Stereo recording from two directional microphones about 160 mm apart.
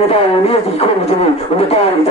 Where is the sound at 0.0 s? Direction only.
40° left (ahead or behind).